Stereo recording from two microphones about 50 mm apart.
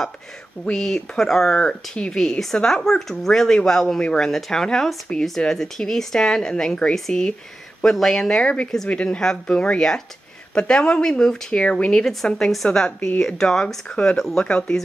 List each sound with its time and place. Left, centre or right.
0.7 s speech: centre
14.4 s speech: centre